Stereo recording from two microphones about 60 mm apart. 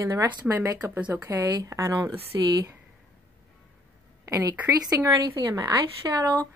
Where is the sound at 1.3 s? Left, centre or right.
Right.